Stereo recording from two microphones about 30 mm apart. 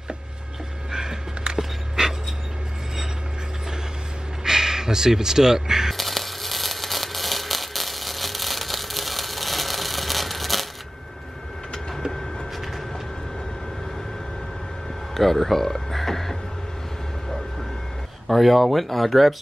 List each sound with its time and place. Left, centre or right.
0.9 s music: right
1.6 s pant: centre
4.4 s speech: centre
5.9 s a sound: centre
12.1 s vehicle: centre
12.5 s vehicle: centre
15.1 s a sound: centre
18.3 s speech: centre
18.6 s speech: centre